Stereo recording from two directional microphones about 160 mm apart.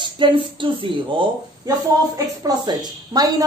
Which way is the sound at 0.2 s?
30° right (ahead or behind).